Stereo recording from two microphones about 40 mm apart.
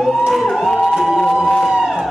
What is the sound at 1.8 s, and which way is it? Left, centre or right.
Music, centre.